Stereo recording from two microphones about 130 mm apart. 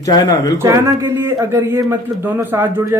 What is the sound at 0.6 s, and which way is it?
Speech, 20° right (ahead or behind).